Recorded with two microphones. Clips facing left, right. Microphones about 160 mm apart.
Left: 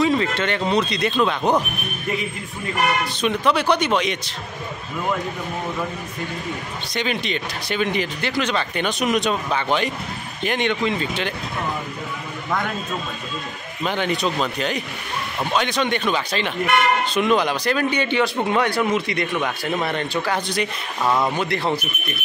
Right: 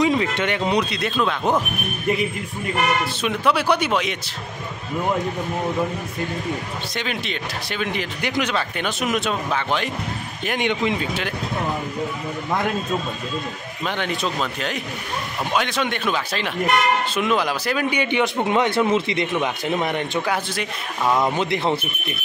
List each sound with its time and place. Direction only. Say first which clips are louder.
0.0 s speech: even; 15° right (ahead or behind); by 1.6 s centre (ahead or behind)
3.2 s speech: left 3 dB; 5° right (ahead or behind)
7.0 s speech: left 5 dB; centre (ahead or behind)
8.2 s speech: even; 15° right (ahead or behind)
10.7 s speech: even; 15° right (ahead or behind)
13.8 s speech: left 3 dB; centre (ahead or behind); by 20.3 s 15° right (ahead or behind)
20.5 s speech: left 2 dB; centre (ahead or behind)
21.2 s a man's voice: right 1 dB; 20° right (ahead or behind)